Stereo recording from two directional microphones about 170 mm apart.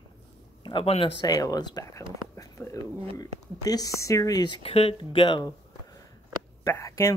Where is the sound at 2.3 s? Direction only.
20° left (ahead or behind).